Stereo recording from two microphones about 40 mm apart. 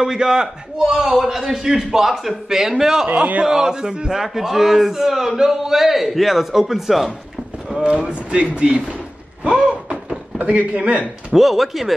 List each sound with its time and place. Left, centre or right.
0.0 s speech: centre
8.1 s speech: right
11.3 s speech: centre